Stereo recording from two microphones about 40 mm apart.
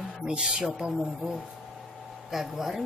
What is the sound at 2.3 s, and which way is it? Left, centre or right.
Speech, centre.